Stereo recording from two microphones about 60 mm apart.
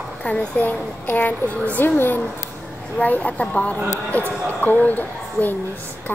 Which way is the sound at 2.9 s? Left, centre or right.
Left.